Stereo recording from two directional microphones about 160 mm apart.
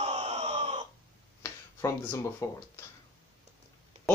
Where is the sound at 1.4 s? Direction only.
20° left (ahead or behind).